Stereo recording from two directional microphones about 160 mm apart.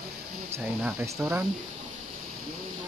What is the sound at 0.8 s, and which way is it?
Speech, 15° right (ahead or behind).